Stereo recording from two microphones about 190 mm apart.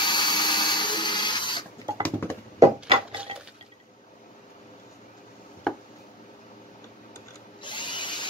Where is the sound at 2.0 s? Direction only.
10° left (ahead or behind).